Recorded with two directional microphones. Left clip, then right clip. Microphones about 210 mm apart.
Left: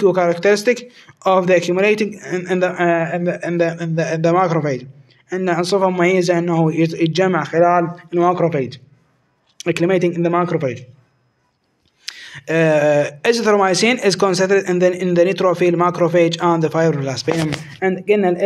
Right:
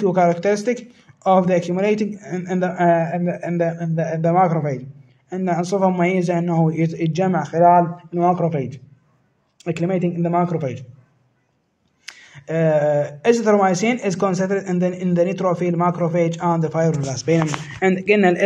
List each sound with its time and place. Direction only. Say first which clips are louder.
0.0 s speech: left 3 dB; 10° left (ahead or behind)
7.6 s speech: right 4 dB; 20° left (ahead or behind)
12.0 s speech: left 8 dB; 10° left (ahead or behind)